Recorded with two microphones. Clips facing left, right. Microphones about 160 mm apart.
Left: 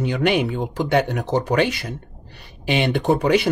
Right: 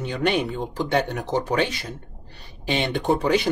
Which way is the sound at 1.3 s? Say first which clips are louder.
Left 4 dB; 65° left (ahead or behind).